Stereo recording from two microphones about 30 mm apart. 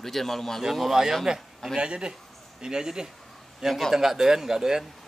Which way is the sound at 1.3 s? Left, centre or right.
Right.